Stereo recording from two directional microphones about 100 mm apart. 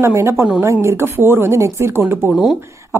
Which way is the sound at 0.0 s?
25° right (ahead or behind).